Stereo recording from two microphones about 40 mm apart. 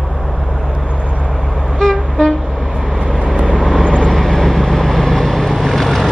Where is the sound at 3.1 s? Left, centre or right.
Right.